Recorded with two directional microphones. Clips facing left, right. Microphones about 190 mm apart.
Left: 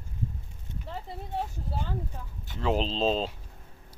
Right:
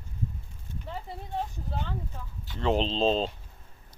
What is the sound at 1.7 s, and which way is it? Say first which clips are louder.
Speech: left 1 dB; 5° left (ahead or behind).